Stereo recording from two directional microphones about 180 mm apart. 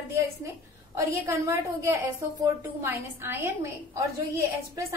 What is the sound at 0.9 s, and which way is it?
A woman's voice, 15° right (ahead or behind).